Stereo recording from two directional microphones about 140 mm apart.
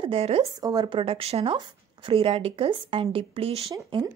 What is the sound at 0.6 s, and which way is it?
Speech, 30° right (ahead or behind).